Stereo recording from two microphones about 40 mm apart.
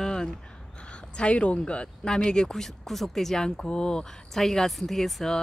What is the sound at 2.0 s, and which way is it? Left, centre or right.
Speech, centre.